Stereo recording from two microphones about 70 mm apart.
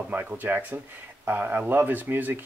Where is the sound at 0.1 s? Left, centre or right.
Right.